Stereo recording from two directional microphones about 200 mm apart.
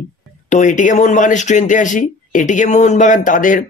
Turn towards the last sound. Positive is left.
turn(degrees=40)  # may be behind; listen again after turning